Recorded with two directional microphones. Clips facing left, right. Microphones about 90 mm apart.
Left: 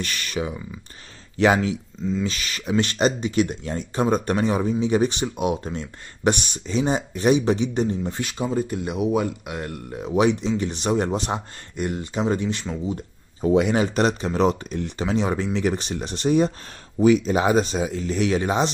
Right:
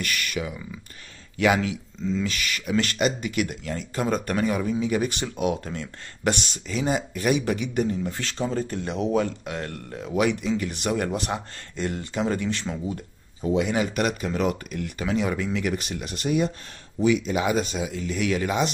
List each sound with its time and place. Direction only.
0.0 s speech: 30° left (ahead or behind)
8.3 s speech: 10° left (ahead or behind)
13.7 s speech: 35° left (ahead or behind)